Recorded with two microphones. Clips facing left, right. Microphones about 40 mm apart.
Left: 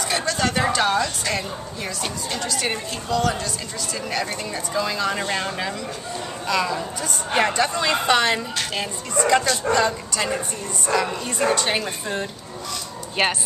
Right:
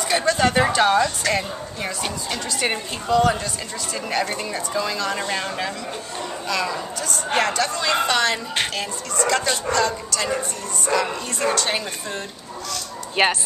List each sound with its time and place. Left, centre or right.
0.0 s a woman's voice: centre
4.9 s speech: centre
7.3 s speech: centre
10.9 s speech: centre
13.2 s speech: centre